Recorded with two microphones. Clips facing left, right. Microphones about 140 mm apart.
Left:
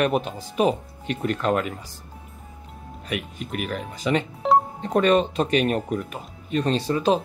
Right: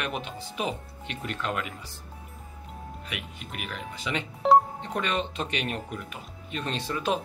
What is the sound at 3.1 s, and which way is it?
Speech, 45° left (ahead or behind).